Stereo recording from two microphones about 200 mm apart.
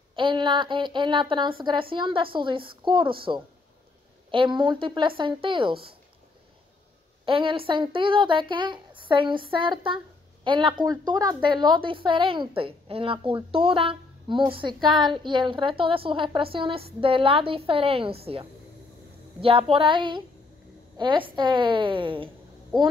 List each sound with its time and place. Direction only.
0.1 s a woman's voice: 25° right (ahead or behind)
7.2 s a woman's voice: 25° right (ahead or behind)